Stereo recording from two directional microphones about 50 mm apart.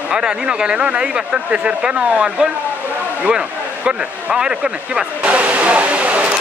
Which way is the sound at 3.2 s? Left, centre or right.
Centre.